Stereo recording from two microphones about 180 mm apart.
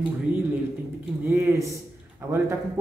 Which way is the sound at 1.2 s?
15° right (ahead or behind).